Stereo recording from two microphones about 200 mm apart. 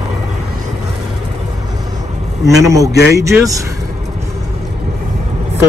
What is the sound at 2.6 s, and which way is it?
Speech, 15° right (ahead or behind).